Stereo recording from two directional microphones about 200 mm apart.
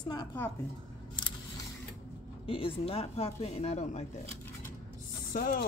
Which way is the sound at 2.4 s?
25° left (ahead or behind).